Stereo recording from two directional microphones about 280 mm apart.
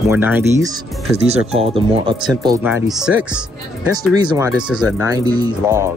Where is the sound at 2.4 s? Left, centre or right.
Centre.